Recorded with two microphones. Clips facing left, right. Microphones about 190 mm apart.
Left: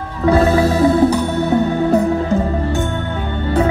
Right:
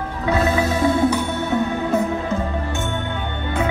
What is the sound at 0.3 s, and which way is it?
Music, 35° left (ahead or behind).